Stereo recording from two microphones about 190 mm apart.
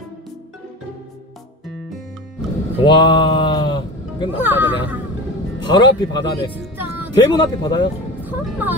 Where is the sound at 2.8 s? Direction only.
25° left (ahead or behind).